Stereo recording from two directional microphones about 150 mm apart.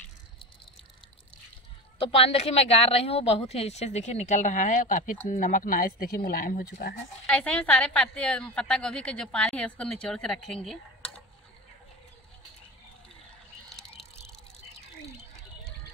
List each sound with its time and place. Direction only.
2.0 s a woman's voice: 40° left (ahead or behind); by 7.0 s 90° left
7.2 s a woman's voice: 5° left (ahead or behind)
13.7 s drip: 5° left (ahead or behind)